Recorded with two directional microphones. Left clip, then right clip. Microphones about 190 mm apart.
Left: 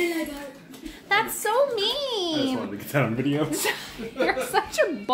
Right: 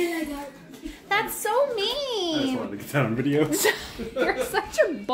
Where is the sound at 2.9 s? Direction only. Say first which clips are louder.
Left 1 dB; 10° left (ahead or behind).